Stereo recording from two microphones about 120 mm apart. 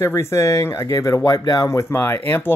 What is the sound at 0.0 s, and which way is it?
Speech, 25° left (ahead or behind).